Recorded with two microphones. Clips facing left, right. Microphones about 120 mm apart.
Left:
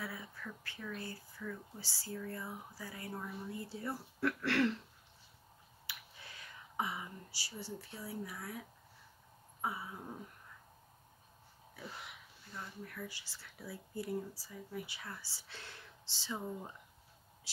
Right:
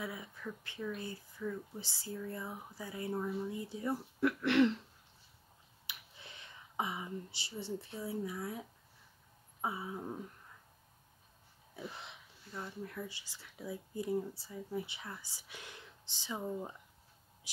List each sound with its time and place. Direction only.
0.0 s speech: 20° right (ahead or behind)
5.9 s speech: 20° right (ahead or behind)
9.6 s a sound: 25° right (ahead or behind)
11.7 s wheeze: 25° right (ahead or behind)
12.8 s speech: 25° right (ahead or behind)